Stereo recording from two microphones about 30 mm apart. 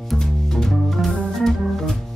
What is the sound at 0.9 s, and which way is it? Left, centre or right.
Organ, centre.